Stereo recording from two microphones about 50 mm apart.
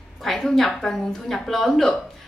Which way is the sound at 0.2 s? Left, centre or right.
Centre.